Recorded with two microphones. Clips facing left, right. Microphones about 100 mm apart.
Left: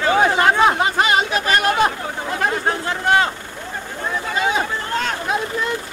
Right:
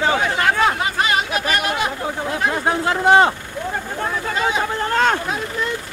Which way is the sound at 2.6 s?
20° right (ahead or behind).